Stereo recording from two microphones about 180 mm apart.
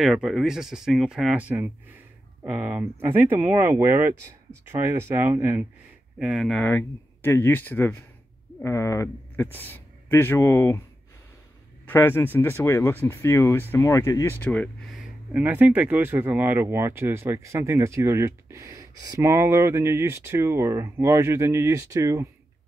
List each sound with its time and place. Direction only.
0.0 s speech: centre (ahead or behind); by 10.8 s 15° left (ahead or behind)
11.8 s speech: 10° left (ahead or behind); by 22.3 s 15° right (ahead or behind)